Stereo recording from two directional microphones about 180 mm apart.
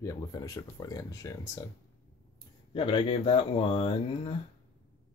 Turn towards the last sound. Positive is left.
turn(degrees=30)  # may be behind; listen again after turning